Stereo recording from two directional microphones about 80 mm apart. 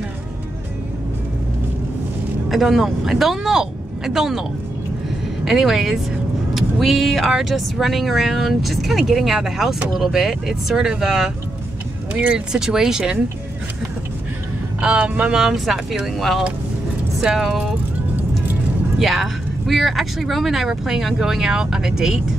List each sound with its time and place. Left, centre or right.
2.5 s speech: centre
14.8 s speech: centre
15.4 s speech: centre
18.9 s speech: centre